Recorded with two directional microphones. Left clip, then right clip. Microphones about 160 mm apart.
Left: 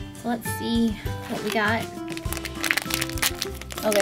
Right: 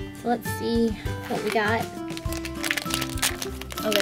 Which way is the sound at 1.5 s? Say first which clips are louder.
Left 1 dB; 40° left (ahead or behind).